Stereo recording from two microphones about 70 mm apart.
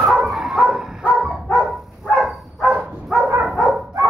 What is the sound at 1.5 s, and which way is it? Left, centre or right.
Dog, centre.